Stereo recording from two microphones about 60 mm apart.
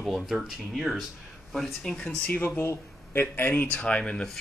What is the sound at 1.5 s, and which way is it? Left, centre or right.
Speech, centre.